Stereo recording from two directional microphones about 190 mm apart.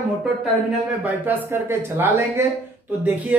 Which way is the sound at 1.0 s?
10° right (ahead or behind).